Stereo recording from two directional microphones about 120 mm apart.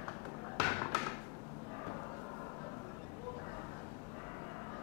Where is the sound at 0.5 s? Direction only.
25° left (ahead or behind).